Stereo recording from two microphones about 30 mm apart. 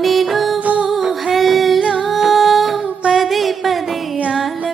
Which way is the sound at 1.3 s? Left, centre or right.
Centre.